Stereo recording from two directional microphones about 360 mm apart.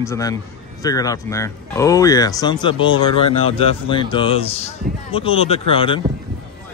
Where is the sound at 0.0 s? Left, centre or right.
Centre.